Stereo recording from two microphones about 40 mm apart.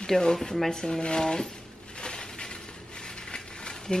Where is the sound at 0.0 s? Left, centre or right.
Centre.